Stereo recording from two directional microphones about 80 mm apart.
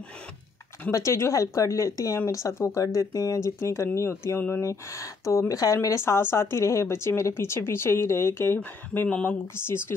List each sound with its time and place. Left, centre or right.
0.9 s speech: left
4.6 s speech: left
8.5 s speech: left